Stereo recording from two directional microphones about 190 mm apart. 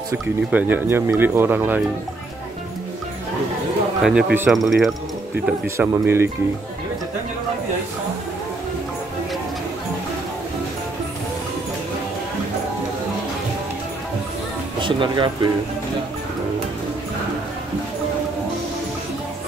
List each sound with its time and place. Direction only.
0.1 s speech: 10° right (ahead or behind)
4.0 s speech: 5° right (ahead or behind)
5.8 s speech: 15° right (ahead or behind)
14.8 s speech: 25° right (ahead or behind)